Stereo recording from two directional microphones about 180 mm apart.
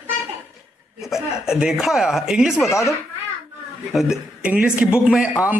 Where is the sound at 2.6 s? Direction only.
15° left (ahead or behind).